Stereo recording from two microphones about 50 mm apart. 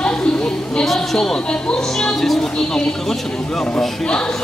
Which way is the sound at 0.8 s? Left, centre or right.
Centre.